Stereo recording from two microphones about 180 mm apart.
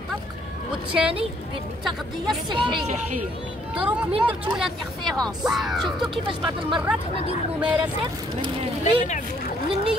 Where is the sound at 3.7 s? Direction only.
5° right (ahead or behind).